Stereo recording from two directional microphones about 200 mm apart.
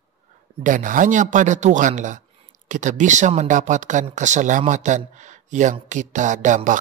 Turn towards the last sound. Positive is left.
turn(degrees=-40)  # may be behind; listen again after turning